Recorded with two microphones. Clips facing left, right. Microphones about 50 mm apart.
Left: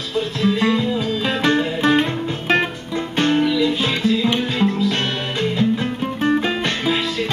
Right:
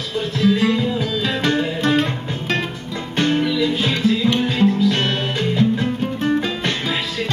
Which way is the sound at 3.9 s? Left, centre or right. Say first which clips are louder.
Right 1 dB; centre.